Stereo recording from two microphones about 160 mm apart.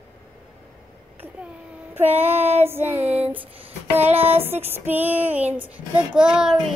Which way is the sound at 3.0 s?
40° right (ahead or behind).